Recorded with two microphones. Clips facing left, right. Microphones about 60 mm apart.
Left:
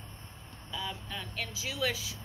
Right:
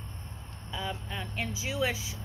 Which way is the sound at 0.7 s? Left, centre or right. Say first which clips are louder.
Right 3 dB; right.